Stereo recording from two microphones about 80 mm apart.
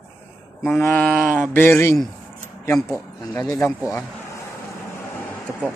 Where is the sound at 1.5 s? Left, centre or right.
Left.